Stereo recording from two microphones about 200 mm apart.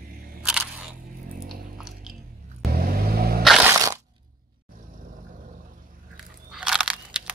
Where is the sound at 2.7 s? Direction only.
50° right (ahead or behind).